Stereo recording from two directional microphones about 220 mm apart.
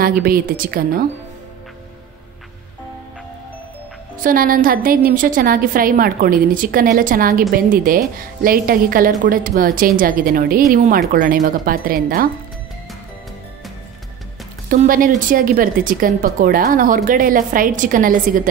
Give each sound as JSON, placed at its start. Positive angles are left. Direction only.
{"t": 0.0, "sound": "speech", "side_deg": -40}
{"t": 4.2, "sound": "speech", "side_deg": -40}
{"t": 14.7, "sound": "speech", "side_deg": -40}